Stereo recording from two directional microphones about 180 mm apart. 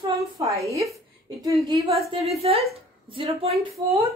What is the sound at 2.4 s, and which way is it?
Speech, 35° right (ahead or behind).